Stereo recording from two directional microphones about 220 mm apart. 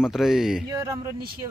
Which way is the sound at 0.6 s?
15° right (ahead or behind).